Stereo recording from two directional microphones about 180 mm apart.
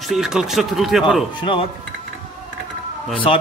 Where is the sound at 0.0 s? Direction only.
Centre (ahead or behind).